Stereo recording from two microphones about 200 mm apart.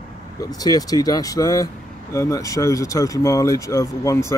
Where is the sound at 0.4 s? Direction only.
20° left (ahead or behind).